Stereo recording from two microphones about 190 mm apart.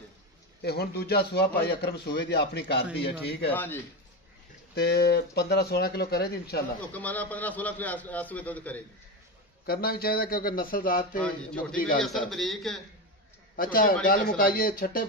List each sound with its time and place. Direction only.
0.6 s a man's voice: 55° left (ahead or behind)
3.5 s a man's voice: 10° left (ahead or behind)
4.7 s a man's voice: 60° left (ahead or behind)
6.9 s a man's voice: 10° left (ahead or behind)
9.7 s speech: 50° left (ahead or behind)
11.1 s a man's voice: 5° left (ahead or behind)
11.7 s speech: 45° left (ahead or behind)
12.3 s a man's voice: centre (ahead or behind)
13.6 s speech: 50° left (ahead or behind)